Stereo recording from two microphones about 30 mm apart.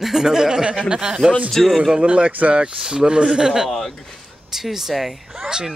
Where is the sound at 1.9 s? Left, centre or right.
Right.